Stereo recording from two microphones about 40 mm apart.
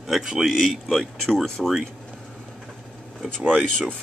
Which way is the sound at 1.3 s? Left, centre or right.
Centre.